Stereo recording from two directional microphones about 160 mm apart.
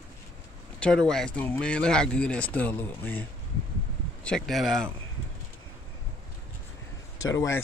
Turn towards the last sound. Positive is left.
turn(degrees=20)  # may be behind; listen again after turning